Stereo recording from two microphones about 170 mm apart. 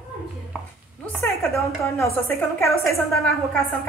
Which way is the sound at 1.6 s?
15° left (ahead or behind).